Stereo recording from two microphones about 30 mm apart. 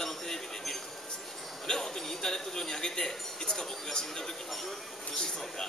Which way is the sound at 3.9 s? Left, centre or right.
Centre.